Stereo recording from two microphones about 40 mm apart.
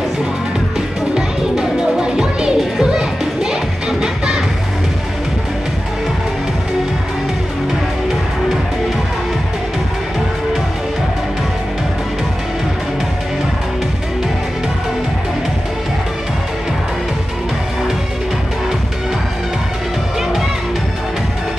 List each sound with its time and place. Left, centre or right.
0.7 s music: centre